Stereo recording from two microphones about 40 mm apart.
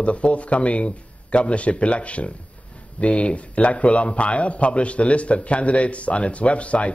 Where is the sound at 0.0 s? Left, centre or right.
Left.